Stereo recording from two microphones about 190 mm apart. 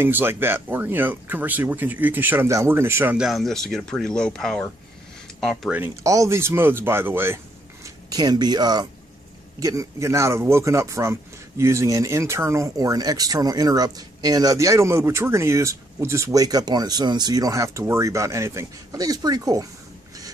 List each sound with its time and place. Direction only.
0.0 s speech: 10° right (ahead or behind)
5.8 s speech: 15° right (ahead or behind)